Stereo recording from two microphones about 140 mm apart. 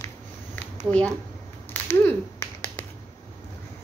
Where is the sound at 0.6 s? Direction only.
10° left (ahead or behind).